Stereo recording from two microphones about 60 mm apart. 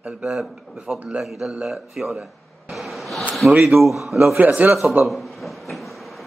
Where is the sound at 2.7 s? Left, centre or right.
Centre.